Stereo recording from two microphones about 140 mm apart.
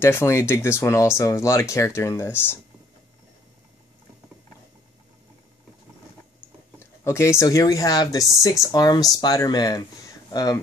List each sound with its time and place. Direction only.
0.0 s speech: 20° left (ahead or behind)
7.1 s speech: 20° left (ahead or behind)